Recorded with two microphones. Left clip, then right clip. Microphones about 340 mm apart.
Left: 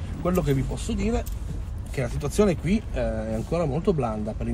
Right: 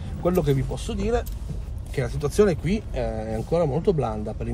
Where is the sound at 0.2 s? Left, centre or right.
Centre.